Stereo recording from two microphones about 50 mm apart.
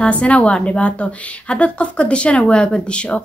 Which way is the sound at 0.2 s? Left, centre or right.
Left.